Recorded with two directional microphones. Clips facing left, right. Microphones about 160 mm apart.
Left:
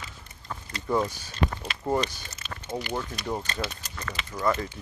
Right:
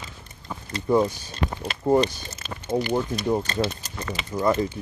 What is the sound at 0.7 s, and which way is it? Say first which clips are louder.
Speech: right 6 dB; 20° right (ahead or behind).